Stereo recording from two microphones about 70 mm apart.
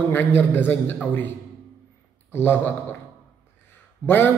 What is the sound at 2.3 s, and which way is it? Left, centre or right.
Speech, left.